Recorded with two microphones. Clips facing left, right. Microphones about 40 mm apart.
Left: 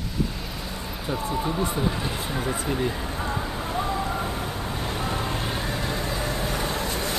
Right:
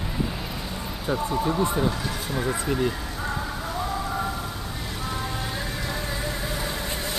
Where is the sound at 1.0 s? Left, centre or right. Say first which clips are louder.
Right 2 dB; centre.